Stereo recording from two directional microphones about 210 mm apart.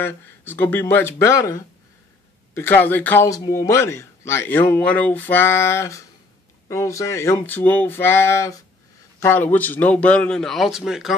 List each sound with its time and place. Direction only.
0.0 s a man's voice: 10° left (ahead or behind)